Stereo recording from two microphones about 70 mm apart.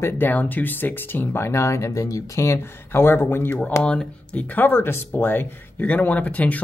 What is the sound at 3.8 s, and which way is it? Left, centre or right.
Speech, centre.